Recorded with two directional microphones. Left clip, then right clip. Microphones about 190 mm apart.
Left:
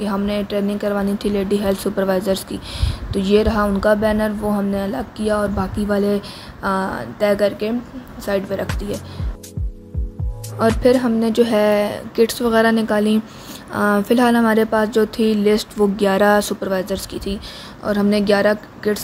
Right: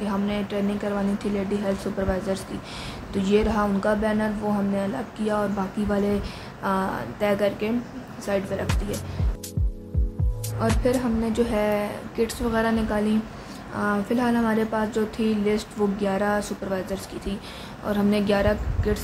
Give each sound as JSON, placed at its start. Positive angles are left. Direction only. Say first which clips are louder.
{"t": 0.0, "sound": "a woman's voice", "louder": "left 6 dB", "side_deg": 35}
{"t": 10.8, "sound": "speech", "louder": "left 9 dB", "side_deg": 40}